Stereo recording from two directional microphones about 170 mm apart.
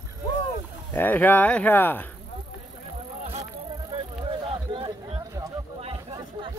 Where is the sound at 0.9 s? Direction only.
10° left (ahead or behind).